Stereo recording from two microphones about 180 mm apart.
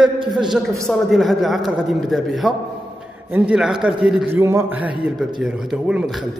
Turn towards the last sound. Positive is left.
turn(degrees=0)  # may be behind; listen again after turning